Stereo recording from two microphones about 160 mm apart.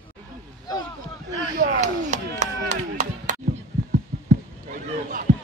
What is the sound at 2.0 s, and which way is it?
Chop, 45° right (ahead or behind).